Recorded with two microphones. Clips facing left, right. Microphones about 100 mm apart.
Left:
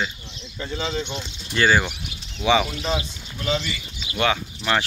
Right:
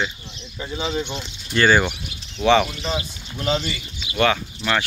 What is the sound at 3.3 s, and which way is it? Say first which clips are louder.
Speech: right 2 dB; 35° right (ahead or behind).